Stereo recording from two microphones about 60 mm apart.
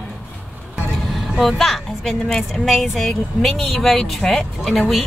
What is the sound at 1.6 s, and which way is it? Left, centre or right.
A woman's voice, centre.